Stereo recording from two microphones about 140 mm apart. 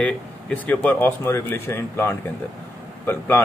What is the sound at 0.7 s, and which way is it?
A man's voice, 15° left (ahead or behind).